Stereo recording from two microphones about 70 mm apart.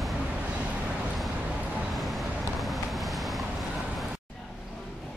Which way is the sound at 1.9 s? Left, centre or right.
Centre.